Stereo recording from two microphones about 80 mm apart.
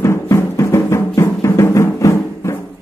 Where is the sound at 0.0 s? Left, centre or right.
Left.